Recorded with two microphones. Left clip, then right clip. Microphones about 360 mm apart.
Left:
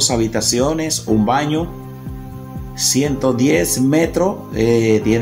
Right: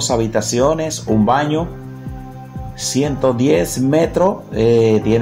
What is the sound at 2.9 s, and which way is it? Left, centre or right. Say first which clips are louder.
Speech: right 2 dB; left.